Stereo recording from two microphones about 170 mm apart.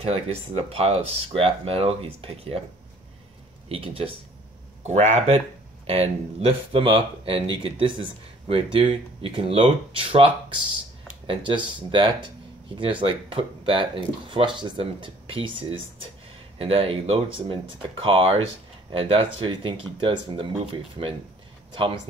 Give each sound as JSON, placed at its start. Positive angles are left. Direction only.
{"t": 0.0, "sound": "speech", "side_deg": -35}
{"t": 3.6, "sound": "speech", "side_deg": -30}